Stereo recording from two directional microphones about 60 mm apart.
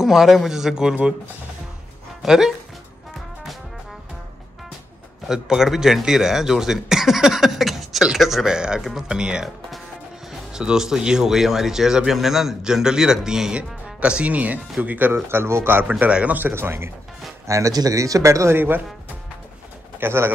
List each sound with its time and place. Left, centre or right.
0.0 s speech: centre
2.2 s speech: centre
5.3 s speech: centre
10.5 s speech: centre; by 15.9 s right
16.1 s speech: centre
16.5 s speech: right
17.5 s speech: right
18.5 s speech: right
20.0 s speech: right